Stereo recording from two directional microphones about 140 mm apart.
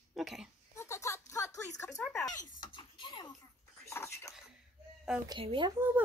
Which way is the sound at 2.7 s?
35° left (ahead or behind).